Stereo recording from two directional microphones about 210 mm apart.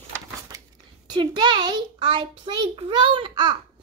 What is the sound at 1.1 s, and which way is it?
A child's voice, 20° right (ahead or behind).